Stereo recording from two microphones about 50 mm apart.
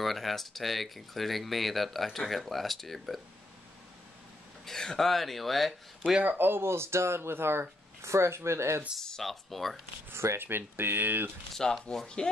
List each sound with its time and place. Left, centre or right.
0.0 s speech: centre
4.6 s speech: centre
6.2 s speech: right
8.0 s speech: right
9.0 s speech: centre
10.1 s speech: right
11.5 s speech: centre